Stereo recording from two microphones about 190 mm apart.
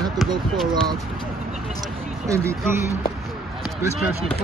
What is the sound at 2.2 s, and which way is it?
Speech, 15° right (ahead or behind).